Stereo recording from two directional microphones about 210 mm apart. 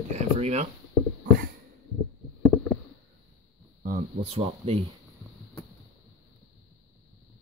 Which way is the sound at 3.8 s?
35° right (ahead or behind).